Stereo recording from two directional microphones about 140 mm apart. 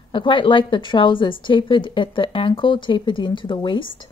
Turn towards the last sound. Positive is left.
turn(degrees=35)  # may be behind; listen again after turning